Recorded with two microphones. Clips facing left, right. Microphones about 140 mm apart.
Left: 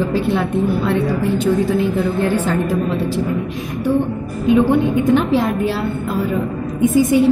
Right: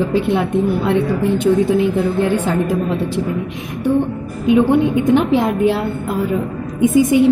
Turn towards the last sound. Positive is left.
turn(degrees=-20)  # may be behind; listen again after turning